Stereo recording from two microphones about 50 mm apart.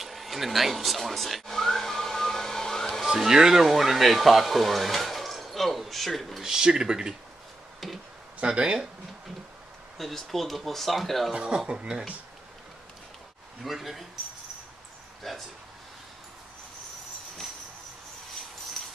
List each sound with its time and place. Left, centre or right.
0.0 s whistling: centre
3.1 s speech: centre
6.4 s speech: centre
7.8 s a sound: centre
8.4 s speech: centre
9.9 s speech: centre
11.3 s speech: centre
13.7 s speech: centre
15.2 s speech: centre